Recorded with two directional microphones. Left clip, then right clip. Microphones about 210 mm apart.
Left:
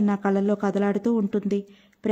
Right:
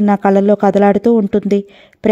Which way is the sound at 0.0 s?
35° right (ahead or behind).